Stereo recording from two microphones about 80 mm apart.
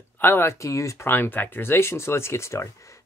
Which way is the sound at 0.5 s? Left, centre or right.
Left.